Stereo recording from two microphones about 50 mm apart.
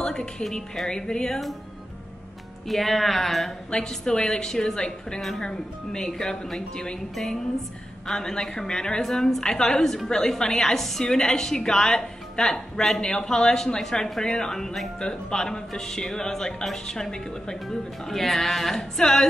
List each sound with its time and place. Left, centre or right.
0.0 s a woman's voice: centre
2.7 s speech: centre
3.7 s a woman's voice: centre
8.1 s a woman's voice: centre